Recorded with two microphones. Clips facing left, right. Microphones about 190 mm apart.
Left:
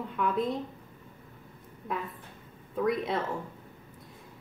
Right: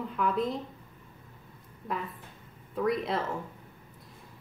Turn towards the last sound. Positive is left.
turn(degrees=0)  # may be behind; listen again after turning